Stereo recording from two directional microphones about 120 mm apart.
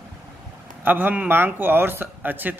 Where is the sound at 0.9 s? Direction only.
15° right (ahead or behind).